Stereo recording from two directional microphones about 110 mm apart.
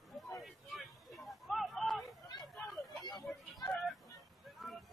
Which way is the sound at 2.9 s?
35° left (ahead or behind).